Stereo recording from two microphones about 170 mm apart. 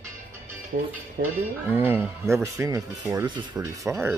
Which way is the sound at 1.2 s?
70° right (ahead or behind).